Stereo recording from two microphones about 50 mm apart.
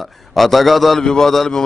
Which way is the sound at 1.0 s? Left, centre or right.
Centre.